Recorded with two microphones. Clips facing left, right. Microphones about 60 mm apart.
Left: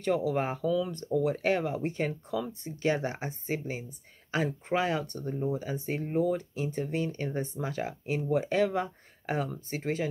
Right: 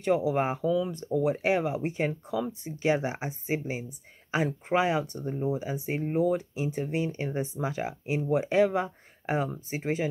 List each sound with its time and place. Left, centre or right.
0.0 s speech: centre